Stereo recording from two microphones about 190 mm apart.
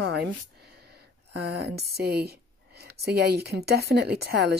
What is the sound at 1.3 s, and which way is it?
Speech, 60° right (ahead or behind).